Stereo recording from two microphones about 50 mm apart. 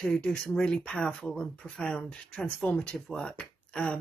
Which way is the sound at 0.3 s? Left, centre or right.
Centre.